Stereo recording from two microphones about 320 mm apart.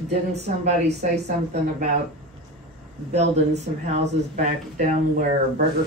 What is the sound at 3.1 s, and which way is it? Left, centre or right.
Speech, right.